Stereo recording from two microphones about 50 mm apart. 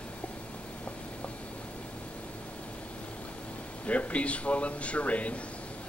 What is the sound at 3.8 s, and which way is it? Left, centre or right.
A man's voice, left.